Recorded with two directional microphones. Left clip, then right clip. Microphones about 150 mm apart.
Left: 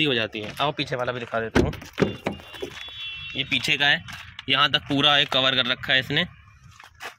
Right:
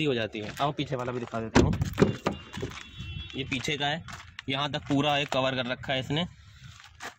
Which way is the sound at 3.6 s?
15° right (ahead or behind).